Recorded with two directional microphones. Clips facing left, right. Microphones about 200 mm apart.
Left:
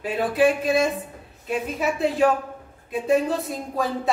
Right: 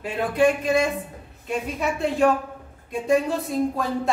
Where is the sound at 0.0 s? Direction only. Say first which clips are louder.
Even; 5° left (ahead or behind).